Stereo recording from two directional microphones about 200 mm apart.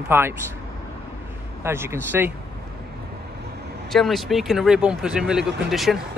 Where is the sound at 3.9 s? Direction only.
Centre (ahead or behind).